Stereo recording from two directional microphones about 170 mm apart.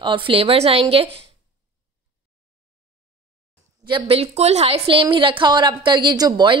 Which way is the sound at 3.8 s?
30° right (ahead or behind).